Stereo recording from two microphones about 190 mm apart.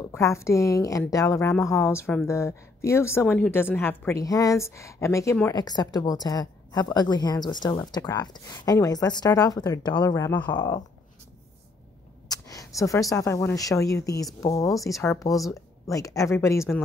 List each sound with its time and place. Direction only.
0.1 s speech: 15° left (ahead or behind)
12.3 s speech: 20° left (ahead or behind)